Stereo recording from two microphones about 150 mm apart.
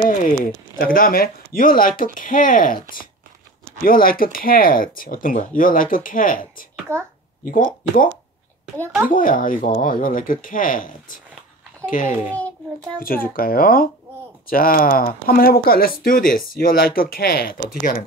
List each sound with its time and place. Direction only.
0.7 s speech: 75° left (ahead or behind)
6.9 s a child's voice: 15° right (ahead or behind)
7.5 s speech: 65° left (ahead or behind)
13.0 s speech: 75° left (ahead or behind)
16.0 s speech: 75° left (ahead or behind); by 17.6 s 90° left
17.7 s speech: 70° left (ahead or behind)